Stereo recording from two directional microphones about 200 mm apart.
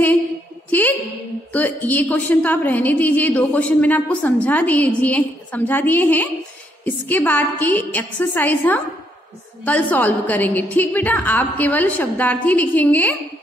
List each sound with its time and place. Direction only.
0.7 s a woman's voice: 10° left (ahead or behind)